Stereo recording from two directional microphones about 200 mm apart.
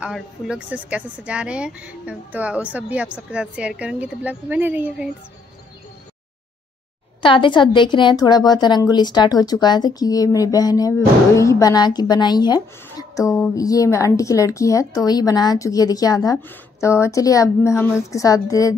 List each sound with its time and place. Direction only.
0.0 s speech: 5° right (ahead or behind)
7.2 s a woman's voice: 25° left (ahead or behind)